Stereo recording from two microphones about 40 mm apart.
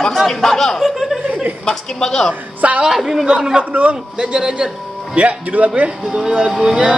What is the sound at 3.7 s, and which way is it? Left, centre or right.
Speech, right.